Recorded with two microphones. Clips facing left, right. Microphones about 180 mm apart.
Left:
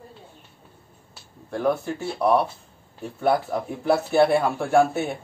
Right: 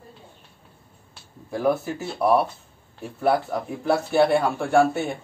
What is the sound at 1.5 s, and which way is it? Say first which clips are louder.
A man's voice: right 1 dB; 5° right (ahead or behind).